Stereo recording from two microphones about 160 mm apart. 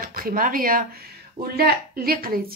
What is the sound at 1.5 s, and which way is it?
Speech, 70° right (ahead or behind).